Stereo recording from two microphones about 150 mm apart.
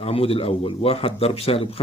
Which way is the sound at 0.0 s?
40° left (ahead or behind).